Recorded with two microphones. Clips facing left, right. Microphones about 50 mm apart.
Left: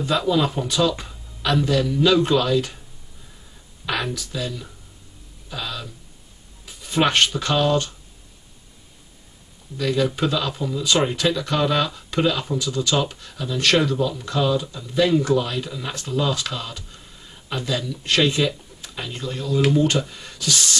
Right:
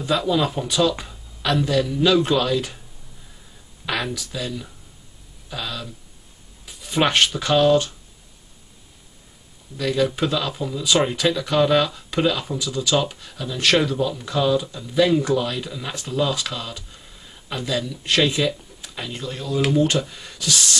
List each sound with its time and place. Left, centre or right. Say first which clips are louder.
0.0 s speech: even; centre
3.8 s speech: even; centre
5.5 s music: even; centre
6.6 s a sound: even; centre
7.3 s speech: right 3 dB; centre
9.8 s speech: even; centre